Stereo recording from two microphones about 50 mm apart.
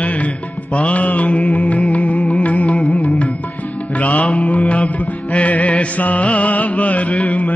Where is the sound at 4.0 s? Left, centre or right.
Left.